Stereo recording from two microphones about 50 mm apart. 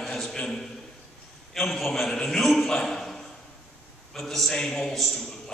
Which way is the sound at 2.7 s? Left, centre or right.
Centre.